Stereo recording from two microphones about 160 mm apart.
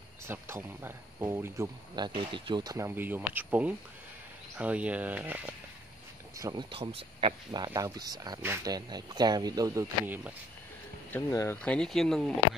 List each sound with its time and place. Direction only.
0.3 s speech: 15° right (ahead or behind)
2.0 s speech: 30° right (ahead or behind); by 5.4 s 10° right (ahead or behind)
6.3 s speech: 20° right (ahead or behind)
6.7 s speech: 35° right (ahead or behind)
10.0 s speech: 10° right (ahead or behind)
11.1 s speech: 15° left (ahead or behind)